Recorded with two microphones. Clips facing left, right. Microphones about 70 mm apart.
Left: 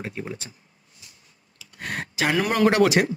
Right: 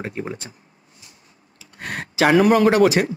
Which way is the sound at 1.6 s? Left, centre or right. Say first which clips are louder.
Right 1 dB; right.